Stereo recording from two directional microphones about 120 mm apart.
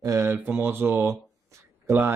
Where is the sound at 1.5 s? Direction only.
20° right (ahead or behind).